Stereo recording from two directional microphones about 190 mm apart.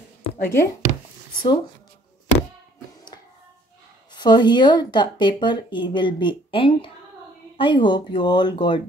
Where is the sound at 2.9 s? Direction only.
20° left (ahead or behind).